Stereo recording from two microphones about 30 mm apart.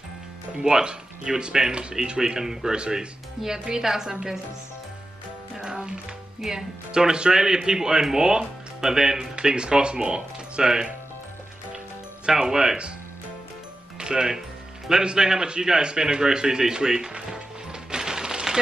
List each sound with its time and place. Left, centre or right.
0.7 s speech: right
5.6 s music: right
6.5 s speech: right
9.3 s speech: right
10.6 s speech: right
12.3 s speech: centre
13.9 s music: right
15.0 s speech: right
17.9 s a sound: right